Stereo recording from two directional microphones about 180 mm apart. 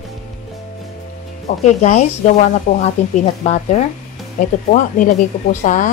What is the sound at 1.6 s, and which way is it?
Speech, 40° left (ahead or behind).